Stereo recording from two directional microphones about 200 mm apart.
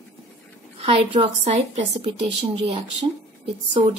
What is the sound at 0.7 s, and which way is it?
A woman's voice, 30° right (ahead or behind).